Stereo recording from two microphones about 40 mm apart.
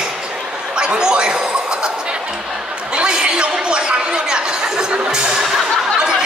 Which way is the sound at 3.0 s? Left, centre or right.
Right.